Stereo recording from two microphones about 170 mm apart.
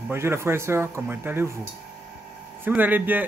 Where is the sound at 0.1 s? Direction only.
15° right (ahead or behind).